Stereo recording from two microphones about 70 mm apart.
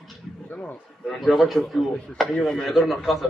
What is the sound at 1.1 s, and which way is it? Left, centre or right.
A man's voice, centre.